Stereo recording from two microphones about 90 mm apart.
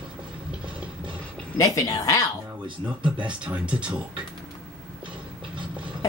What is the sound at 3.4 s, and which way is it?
Speech, 15° right (ahead or behind).